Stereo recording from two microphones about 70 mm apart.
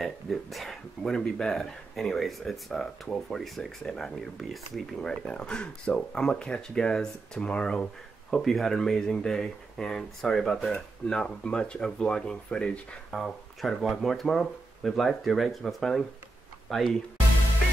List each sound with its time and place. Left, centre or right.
0.0 s speech: centre
8.4 s speech: centre
13.1 s speech: centre